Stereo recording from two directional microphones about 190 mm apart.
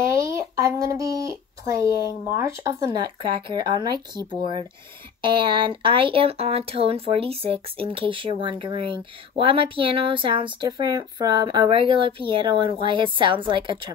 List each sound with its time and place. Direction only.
0.0 s speech: 15° right (ahead or behind)
3.2 s speech: 25° right (ahead or behind)